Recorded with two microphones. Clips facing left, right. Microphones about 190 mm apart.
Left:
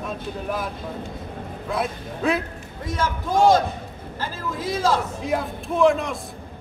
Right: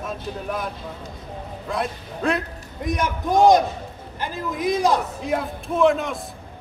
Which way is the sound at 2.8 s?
15° right (ahead or behind).